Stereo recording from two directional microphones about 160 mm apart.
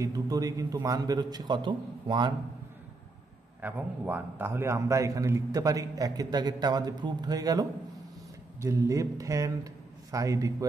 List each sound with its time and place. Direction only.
0.0 s a man's voice: 20° right (ahead or behind)
3.6 s a man's voice: 10° right (ahead or behind)